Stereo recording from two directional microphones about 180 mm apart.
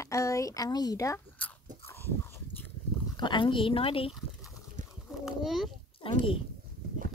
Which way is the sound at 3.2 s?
25° left (ahead or behind).